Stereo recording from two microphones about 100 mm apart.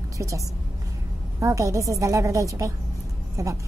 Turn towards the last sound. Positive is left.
turn(degrees=-35)  # may be behind; listen again after turning